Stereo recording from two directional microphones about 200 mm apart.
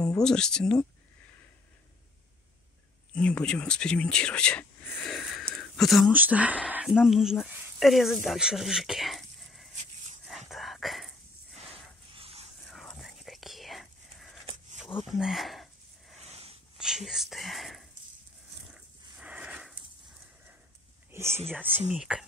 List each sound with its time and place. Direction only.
0.2 s speech: 5° left (ahead or behind)
3.2 s speech: 5° left (ahead or behind)
10.2 s whispering: centre (ahead or behind)
12.1 s dog: 30° right (ahead or behind)
12.6 s whispering: centre (ahead or behind)
15.0 s a sound: centre (ahead or behind)
16.2 s a sound: 30° right (ahead or behind)
16.7 s speech: centre (ahead or behind)
18.7 s a sound: 5° right (ahead or behind)
21.5 s speech: 10° right (ahead or behind)